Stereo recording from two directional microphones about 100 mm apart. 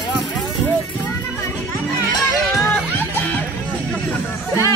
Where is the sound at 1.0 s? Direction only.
25° left (ahead or behind).